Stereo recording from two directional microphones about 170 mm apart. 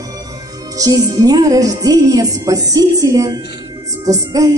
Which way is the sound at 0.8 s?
20° right (ahead or behind).